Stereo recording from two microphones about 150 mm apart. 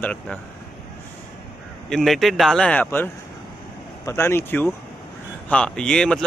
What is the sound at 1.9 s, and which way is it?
A man's voice, centre (ahead or behind).